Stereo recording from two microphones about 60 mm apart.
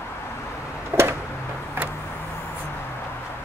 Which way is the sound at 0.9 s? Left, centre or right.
Right.